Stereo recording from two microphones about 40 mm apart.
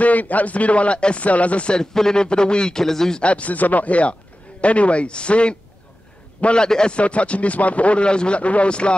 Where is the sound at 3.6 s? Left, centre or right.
Left; by 6.9 s centre.